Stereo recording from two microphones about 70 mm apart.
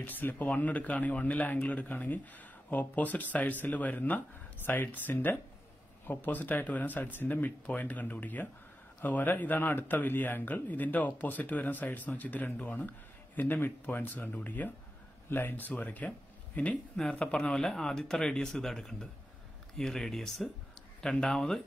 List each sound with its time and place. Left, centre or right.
0.0 s speech: left
16.9 s speech: centre